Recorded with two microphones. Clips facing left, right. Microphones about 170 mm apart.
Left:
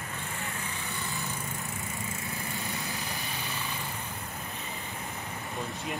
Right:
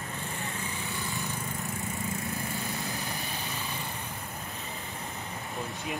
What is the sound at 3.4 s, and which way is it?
Vehicle, centre (ahead or behind).